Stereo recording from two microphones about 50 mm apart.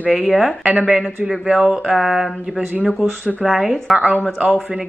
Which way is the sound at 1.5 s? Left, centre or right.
Centre.